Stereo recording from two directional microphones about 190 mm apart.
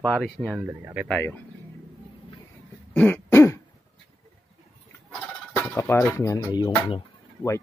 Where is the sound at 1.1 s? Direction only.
10° left (ahead or behind).